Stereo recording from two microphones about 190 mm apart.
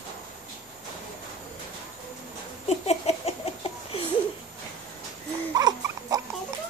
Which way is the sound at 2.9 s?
35° left (ahead or behind).